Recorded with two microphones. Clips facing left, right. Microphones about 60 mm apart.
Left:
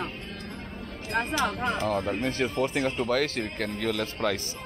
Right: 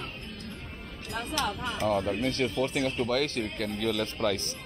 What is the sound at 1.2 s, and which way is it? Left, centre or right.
Speech, left.